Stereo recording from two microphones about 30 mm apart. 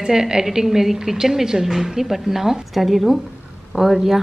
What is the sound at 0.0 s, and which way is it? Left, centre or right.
A woman's voice, right.